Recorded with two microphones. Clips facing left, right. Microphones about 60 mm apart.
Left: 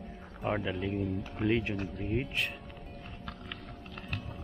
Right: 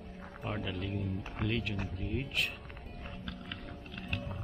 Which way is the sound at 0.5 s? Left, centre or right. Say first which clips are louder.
Left 3 dB; left.